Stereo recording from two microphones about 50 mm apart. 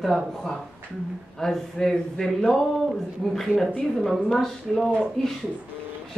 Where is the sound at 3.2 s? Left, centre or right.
Centre.